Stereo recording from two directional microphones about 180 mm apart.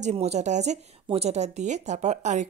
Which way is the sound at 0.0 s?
35° right (ahead or behind).